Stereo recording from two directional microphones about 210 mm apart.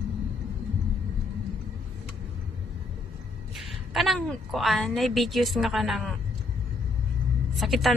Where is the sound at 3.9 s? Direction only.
Centre (ahead or behind).